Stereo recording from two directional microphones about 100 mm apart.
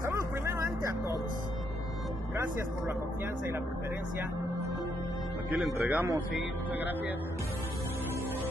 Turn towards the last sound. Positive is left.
turn(degrees=-20)  # may be behind; listen again after turning